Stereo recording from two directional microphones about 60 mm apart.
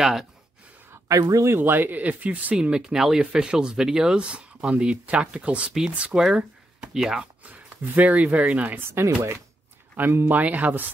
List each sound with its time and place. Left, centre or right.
0.0 s speech: centre
1.0 s speech: right
1.6 s speech: right
2.7 s speech: centre
7.4 s speech: right
8.7 s speech: right
9.9 s speech: right